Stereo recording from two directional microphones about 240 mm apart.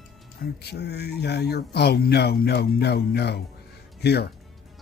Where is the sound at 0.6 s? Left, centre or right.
Left.